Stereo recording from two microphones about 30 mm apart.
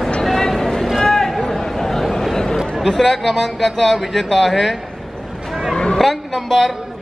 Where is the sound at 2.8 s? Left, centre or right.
Centre.